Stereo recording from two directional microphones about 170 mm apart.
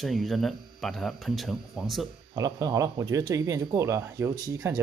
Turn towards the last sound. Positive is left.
turn(degrees=-20)  # may be behind; listen again after turning